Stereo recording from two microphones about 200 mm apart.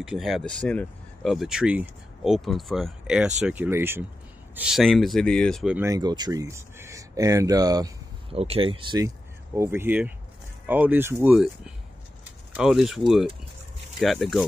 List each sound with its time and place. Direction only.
0.0 s speech: centre (ahead or behind)
5.8 s speech: 15° right (ahead or behind)
8.4 s speech: 30° right (ahead or behind)
9.6 s speech: 10° right (ahead or behind)